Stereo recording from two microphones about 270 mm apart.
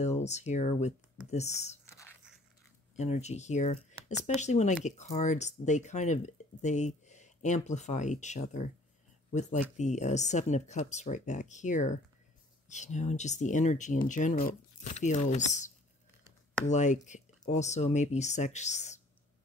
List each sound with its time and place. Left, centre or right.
0.0 s speech: left
1.9 s a sound: centre
3.0 s speech: left